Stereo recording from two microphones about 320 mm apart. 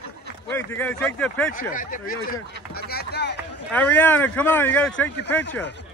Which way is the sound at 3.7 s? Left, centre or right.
Centre.